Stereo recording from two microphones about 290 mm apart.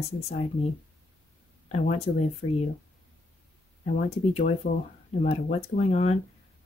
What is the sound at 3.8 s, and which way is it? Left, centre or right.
Speech, left.